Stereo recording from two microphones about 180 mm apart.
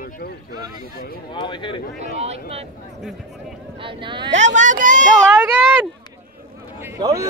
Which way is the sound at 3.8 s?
30° right (ahead or behind).